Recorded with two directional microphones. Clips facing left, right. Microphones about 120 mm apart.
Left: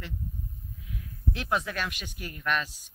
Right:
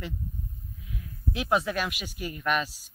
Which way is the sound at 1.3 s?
10° right (ahead or behind).